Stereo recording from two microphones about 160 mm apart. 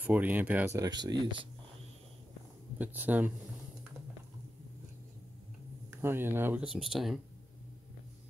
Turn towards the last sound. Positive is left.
turn(degrees=0)  # may be behind; listen again after turning